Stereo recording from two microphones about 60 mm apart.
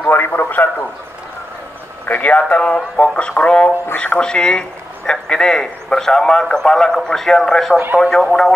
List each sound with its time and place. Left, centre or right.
0.0 s radio: left
2.0 s speech: left; by 8.5 s centre